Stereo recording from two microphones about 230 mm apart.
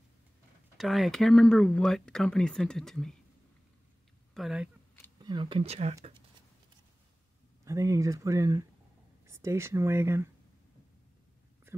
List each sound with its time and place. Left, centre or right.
0.7 s speech: centre
4.3 s speech: centre
5.2 s speech: right
7.6 s speech: centre